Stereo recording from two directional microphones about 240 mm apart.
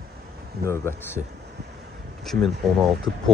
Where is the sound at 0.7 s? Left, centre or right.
Centre.